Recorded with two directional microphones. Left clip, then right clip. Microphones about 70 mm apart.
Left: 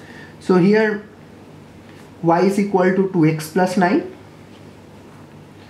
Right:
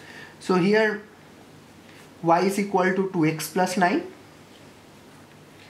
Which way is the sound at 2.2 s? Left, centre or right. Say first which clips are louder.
Left 5 dB; centre.